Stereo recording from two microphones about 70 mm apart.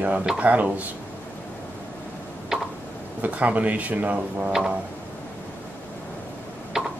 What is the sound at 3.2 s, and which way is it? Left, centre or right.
Speech, right.